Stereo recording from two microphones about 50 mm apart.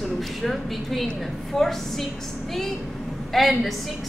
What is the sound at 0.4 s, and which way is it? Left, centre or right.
A woman's voice, centre.